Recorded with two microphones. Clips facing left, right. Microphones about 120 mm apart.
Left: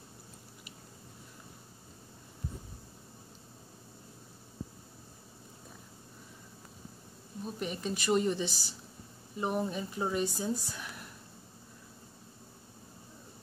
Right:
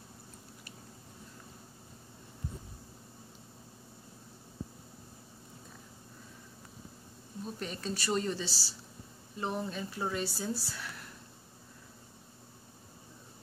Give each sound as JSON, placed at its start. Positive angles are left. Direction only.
{"t": 7.4, "sound": "speech", "side_deg": 10}